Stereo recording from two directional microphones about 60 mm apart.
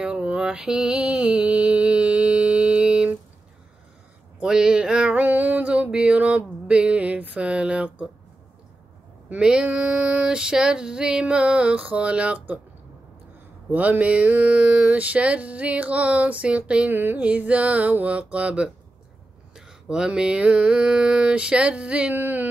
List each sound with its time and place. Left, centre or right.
0.0 s mantra: centre
4.4 s a sound: centre
6.1 s female singing: right
9.3 s female singing: centre
13.7 s female singing: right